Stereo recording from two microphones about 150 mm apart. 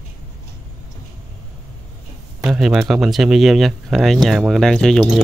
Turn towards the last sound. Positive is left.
turn(degrees=0)  # may be behind; listen again after turning